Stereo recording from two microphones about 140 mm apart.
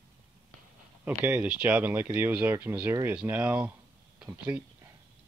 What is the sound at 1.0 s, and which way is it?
Speech, 10° right (ahead or behind).